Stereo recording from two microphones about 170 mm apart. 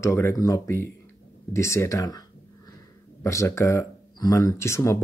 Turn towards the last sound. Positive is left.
turn(degrees=15)  # may be behind; listen again after turning